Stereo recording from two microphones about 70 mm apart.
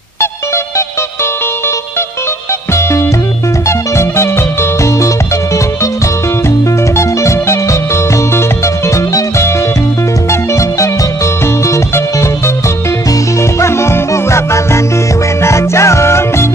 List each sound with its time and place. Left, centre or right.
2.7 s music: left
7.0 s music: left
10.5 s music: left
13.4 s music: left